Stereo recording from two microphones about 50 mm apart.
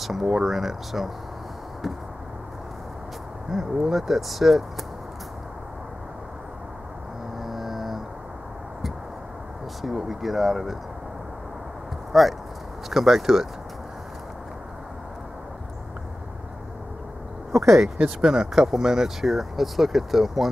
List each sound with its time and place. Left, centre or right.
0.0 s speech: centre
3.5 s speech: centre
7.4 s a sound: centre
9.8 s speech: centre
12.1 s speech: centre
17.5 s speech: right
18.2 s speech: centre